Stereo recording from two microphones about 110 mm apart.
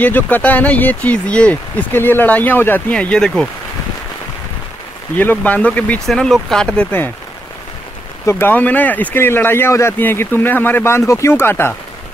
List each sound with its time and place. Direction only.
0.0 s speech: 15° left (ahead or behind)
5.1 s speech: 15° left (ahead or behind)
6.0 s speech: centre (ahead or behind)
8.3 s speech: 20° left (ahead or behind)